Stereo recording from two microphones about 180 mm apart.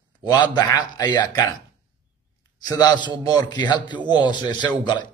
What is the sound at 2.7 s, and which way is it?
A man's voice, 20° left (ahead or behind).